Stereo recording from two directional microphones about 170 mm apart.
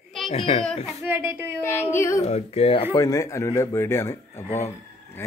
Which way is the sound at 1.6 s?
15° left (ahead or behind).